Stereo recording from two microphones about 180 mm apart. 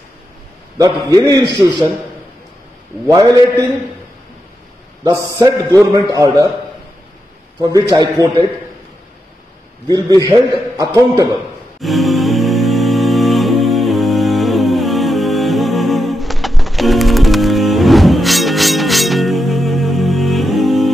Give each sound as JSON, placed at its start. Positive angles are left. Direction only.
{"t": 0.7, "sound": "a man's voice", "side_deg": -20}
{"t": 3.1, "sound": "a man's voice", "side_deg": -20}
{"t": 5.0, "sound": "a man's voice", "side_deg": -20}
{"t": 7.6, "sound": "a man's voice", "side_deg": -20}
{"t": 9.8, "sound": "a man's voice", "side_deg": -20}
{"t": 11.8, "sound": "music", "side_deg": 0}